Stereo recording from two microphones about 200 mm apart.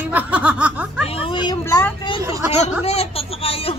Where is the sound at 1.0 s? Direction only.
30° left (ahead or behind); by 2.0 s 10° left (ahead or behind).